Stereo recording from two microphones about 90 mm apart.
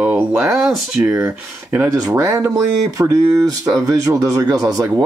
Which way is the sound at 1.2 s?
25° right (ahead or behind).